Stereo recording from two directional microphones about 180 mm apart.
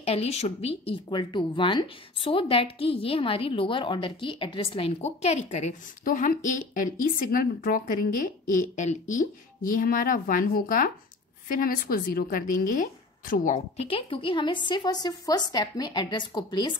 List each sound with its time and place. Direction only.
0.0 s speech: 35° left (ahead or behind)